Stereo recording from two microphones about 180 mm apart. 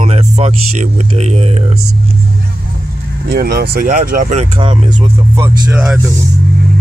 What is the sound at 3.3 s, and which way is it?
Speech, 60° right (ahead or behind).